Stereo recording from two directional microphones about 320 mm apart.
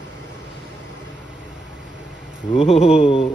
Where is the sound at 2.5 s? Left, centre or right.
Centre.